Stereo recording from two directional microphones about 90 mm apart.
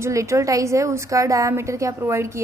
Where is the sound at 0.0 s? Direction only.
35° right (ahead or behind).